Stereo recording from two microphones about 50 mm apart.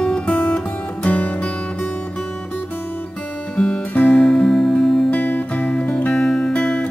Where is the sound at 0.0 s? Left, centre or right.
Centre.